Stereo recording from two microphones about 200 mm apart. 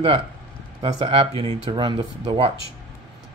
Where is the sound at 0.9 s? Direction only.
25° right (ahead or behind).